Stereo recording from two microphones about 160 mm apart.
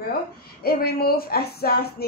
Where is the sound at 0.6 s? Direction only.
70° left (ahead or behind).